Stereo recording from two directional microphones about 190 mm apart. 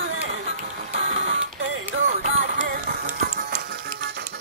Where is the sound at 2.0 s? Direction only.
45° right (ahead or behind).